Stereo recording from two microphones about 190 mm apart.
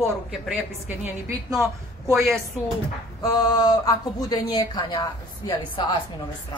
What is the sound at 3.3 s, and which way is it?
A woman's voice, 20° left (ahead or behind).